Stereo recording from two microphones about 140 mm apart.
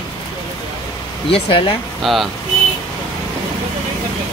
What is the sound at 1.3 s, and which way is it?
Speech, 40° left (ahead or behind).